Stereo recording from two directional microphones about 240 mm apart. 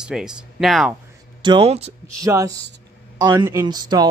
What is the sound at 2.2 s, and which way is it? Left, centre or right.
Speech, centre.